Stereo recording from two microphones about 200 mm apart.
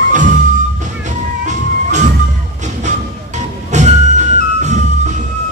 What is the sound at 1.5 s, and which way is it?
Music, 35° right (ahead or behind).